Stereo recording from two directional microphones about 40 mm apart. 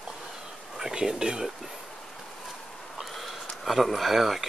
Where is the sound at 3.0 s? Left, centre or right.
Centre.